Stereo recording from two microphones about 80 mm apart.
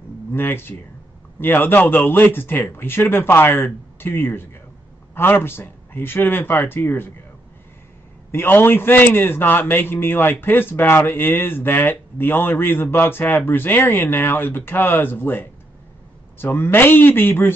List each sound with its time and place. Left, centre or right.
0.3 s a man's voice: left
8.3 s a man's voice: left